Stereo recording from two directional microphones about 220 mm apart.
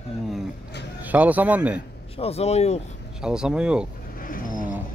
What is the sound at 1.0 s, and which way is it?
Speech, 5° right (ahead or behind).